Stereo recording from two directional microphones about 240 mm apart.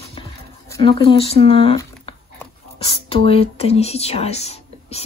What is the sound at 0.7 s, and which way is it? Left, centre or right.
Speech, centre.